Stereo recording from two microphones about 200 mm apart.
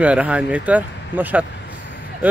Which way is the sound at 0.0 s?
5° right (ahead or behind).